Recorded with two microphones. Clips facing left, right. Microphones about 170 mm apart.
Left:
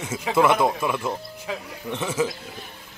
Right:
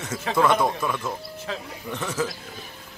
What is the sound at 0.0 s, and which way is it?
Speech, 10° left (ahead or behind).